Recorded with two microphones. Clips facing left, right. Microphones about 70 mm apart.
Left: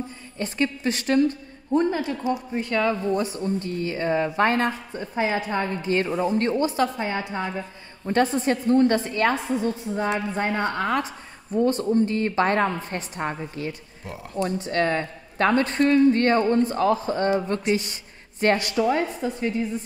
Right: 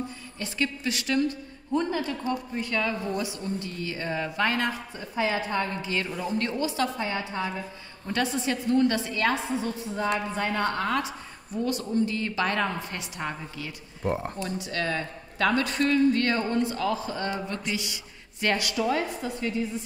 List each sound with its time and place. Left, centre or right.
0.4 s speech: left
10.0 s a woman's voice: centre
10.5 s a woman's voice: centre
10.8 s speech: left
14.0 s speech: right
14.3 s speech: left